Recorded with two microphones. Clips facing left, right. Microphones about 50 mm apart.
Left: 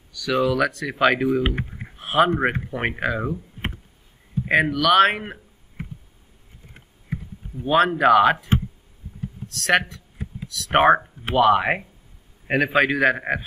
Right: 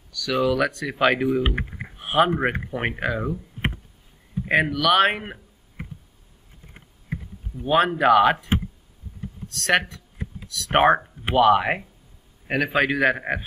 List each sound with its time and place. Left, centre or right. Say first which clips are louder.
0.2 s a man's voice: left 1 dB; centre
0.5 s speech: left 1 dB; centre
1.6 s typing: right 1 dB; right
2.0 s speech: left 1 dB; centre
4.5 s speech: left 1 dB; centre
7.5 s speech: left 1 dB; centre
9.5 s speech: left 1 dB; centre
12.4 s a man's voice: left 2 dB; centre